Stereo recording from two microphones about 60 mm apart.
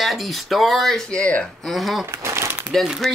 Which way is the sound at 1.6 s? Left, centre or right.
Centre.